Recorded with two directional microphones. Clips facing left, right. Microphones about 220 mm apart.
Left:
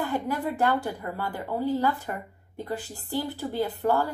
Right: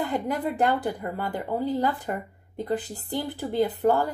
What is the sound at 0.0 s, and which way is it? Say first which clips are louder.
A woman's voice: right 1 dB; 20° right (ahead or behind).